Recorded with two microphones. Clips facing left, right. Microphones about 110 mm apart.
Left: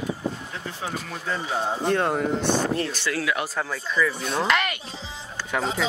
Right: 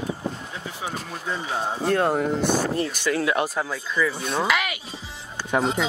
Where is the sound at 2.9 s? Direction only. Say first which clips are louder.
Right 3 dB; 15° right (ahead or behind).